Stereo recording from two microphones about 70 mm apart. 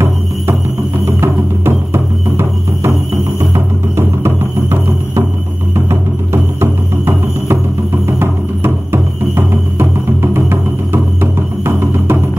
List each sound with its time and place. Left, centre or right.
1.0 s music: right